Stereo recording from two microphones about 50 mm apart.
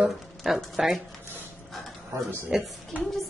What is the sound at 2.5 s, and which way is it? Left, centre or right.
Speech, centre.